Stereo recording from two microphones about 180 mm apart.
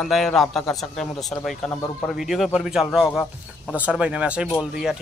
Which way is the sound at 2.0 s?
Centre (ahead or behind).